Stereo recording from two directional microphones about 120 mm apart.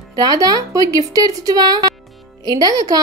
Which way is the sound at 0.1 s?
30° right (ahead or behind).